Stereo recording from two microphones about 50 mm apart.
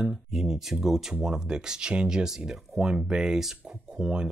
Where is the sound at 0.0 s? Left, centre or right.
Centre.